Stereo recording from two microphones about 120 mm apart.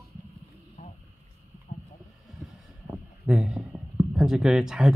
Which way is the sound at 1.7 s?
85° left.